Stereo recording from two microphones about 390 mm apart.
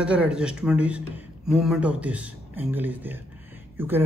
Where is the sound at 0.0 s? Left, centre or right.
Centre.